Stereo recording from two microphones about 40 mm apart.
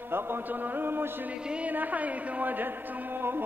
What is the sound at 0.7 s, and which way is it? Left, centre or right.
Music, right.